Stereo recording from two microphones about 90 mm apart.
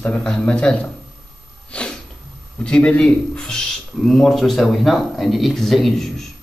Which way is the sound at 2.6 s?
10° left (ahead or behind).